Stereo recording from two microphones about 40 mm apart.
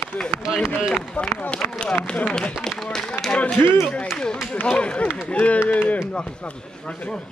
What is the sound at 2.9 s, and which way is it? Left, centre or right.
Speech, centre.